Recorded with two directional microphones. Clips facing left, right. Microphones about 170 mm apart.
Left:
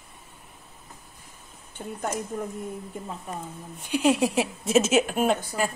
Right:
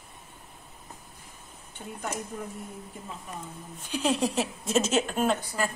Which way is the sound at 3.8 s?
10° left (ahead or behind).